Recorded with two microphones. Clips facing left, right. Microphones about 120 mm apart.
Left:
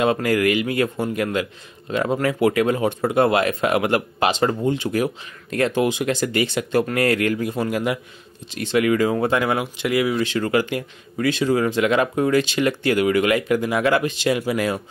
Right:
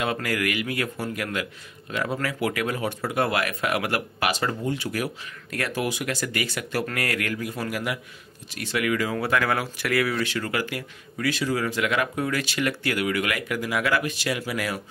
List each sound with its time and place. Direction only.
0.0 s speech: 25° left (ahead or behind)